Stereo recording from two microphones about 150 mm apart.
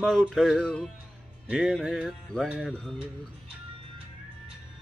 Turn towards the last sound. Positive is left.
turn(degrees=0)  # may be behind; listen again after turning